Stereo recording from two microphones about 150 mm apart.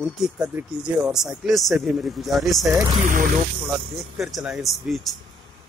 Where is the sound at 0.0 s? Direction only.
Centre (ahead or behind).